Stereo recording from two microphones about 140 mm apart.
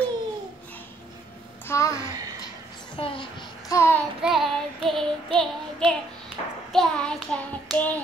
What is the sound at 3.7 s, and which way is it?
Child singing, 20° left (ahead or behind).